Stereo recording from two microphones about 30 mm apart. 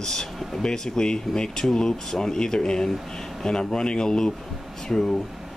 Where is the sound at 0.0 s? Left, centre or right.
Centre.